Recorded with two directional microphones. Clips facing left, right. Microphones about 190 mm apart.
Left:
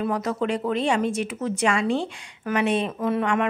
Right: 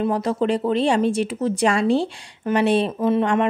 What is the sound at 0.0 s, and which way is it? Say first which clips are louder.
Speech: right 4 dB; 30° right (ahead or behind).